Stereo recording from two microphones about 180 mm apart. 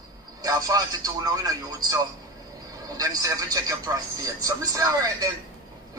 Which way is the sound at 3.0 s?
20° right (ahead or behind).